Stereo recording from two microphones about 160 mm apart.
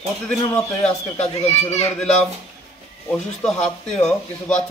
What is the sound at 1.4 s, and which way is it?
Speech, 45° left (ahead or behind).